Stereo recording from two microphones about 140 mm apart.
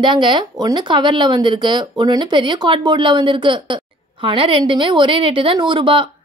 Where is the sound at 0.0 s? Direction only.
35° right (ahead or behind).